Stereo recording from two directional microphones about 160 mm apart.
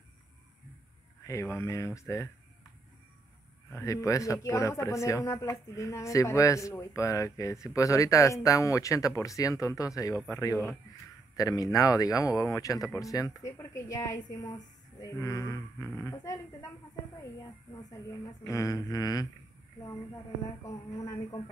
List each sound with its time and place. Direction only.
1.2 s speech: 20° left (ahead or behind)
3.7 s speech: 20° left (ahead or behind)
18.2 s speech: 20° left (ahead or behind)
20.6 s speech: 20° left (ahead or behind)